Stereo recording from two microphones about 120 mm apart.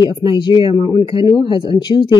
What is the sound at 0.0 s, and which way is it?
Speech, 40° left (ahead or behind).